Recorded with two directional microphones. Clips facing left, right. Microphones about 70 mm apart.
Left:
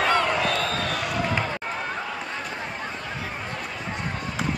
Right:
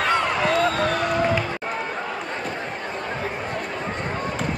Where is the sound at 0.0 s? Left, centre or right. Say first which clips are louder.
Right 1 dB; centre.